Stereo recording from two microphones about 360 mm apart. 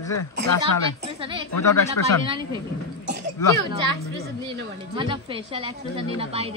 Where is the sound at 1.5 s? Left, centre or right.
Left.